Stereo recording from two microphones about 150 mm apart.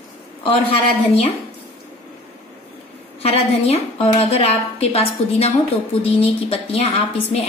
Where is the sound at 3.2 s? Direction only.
40° left (ahead or behind).